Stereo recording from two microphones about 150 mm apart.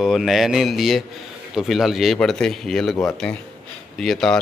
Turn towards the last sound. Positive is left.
turn(degrees=0)  # may be behind; listen again after turning